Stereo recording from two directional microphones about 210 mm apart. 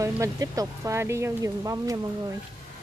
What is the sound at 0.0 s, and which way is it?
Speech, 15° right (ahead or behind).